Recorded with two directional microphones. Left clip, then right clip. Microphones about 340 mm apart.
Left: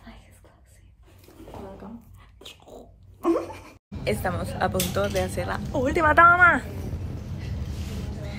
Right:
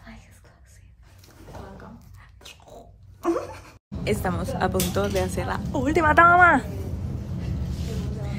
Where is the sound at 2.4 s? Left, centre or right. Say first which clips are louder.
Left 1 dB; right.